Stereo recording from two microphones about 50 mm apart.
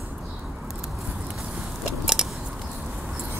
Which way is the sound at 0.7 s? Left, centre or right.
Centre.